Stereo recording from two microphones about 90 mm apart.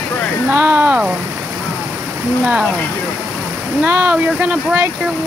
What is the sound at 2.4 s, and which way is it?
Speech, 5° right (ahead or behind).